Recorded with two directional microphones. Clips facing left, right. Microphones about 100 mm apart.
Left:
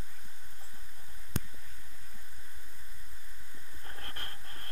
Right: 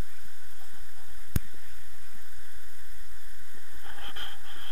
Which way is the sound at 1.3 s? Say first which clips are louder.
Right 2 dB; 60° left (ahead or behind).